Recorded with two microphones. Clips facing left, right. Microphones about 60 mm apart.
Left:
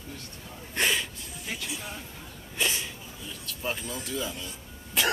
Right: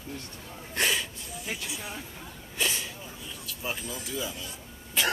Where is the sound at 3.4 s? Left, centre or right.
Centre.